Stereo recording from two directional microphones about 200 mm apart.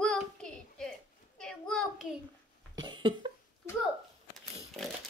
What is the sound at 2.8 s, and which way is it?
Cough, 25° right (ahead or behind).